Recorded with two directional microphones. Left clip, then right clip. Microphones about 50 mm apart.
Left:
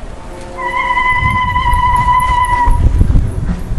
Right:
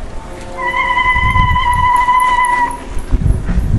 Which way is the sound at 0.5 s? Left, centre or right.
Right.